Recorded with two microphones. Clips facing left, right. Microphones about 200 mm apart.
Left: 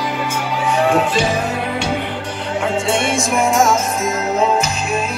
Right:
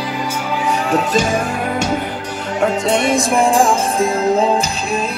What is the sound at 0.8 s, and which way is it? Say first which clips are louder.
Music: right 1 dB; 40° right (ahead or behind).